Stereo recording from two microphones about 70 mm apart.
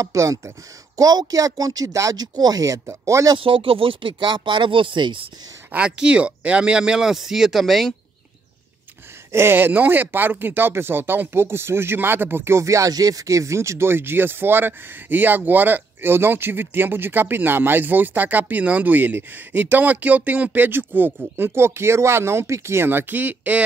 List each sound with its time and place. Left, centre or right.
0.0 s speech: right
0.9 s speech: right
5.0 s speech: right
5.7 s speech: centre
9.3 s speech: right